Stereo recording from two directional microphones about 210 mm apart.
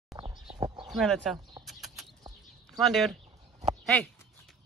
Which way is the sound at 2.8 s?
Centre (ahead or behind).